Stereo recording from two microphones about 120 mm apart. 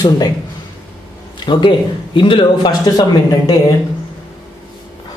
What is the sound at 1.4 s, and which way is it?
Speech, 40° left (ahead or behind).